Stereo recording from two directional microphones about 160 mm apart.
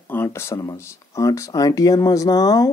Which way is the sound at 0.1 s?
15° left (ahead or behind).